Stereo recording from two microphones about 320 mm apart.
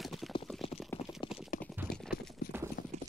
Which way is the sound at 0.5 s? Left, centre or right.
Centre.